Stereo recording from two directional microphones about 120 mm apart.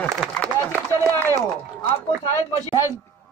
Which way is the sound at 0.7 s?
20° left (ahead or behind).